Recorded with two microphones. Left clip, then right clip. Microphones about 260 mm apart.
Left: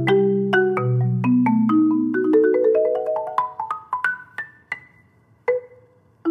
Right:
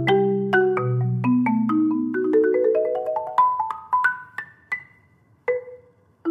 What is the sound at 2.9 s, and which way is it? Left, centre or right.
Music, centre.